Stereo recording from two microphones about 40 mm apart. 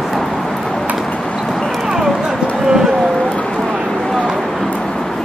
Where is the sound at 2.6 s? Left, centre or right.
Centre.